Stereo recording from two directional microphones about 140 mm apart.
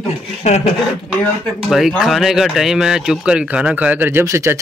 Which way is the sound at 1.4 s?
Centre (ahead or behind).